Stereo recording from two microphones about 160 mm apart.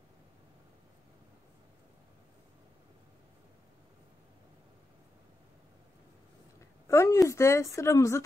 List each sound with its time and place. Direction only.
6.9 s speech: 20° left (ahead or behind)